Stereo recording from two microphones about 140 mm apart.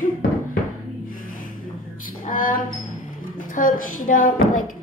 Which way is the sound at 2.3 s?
75° left (ahead or behind).